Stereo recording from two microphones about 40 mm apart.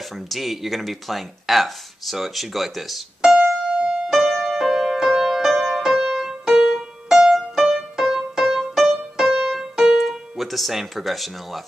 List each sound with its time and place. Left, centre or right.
0.3 s speech: centre
3.7 s music: right
4.1 s music: centre
8.9 s keyboard: centre